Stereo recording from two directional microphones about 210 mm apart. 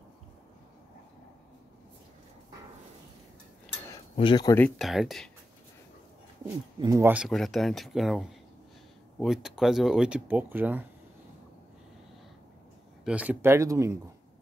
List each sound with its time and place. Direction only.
3.9 s a sound: 20° left (ahead or behind)
4.6 s speech: 5° left (ahead or behind)
6.8 s speech: 15° right (ahead or behind)
13.0 s speech: 5° right (ahead or behind)